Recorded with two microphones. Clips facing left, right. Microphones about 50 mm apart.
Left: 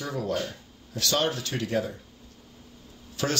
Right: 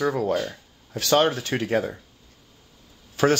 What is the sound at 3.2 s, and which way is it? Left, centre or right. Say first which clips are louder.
Speech: right 9 dB; right.